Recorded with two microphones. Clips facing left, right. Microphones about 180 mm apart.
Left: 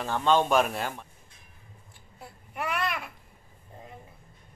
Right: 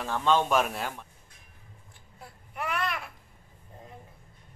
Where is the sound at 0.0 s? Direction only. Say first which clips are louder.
Left 1 dB; centre (ahead or behind).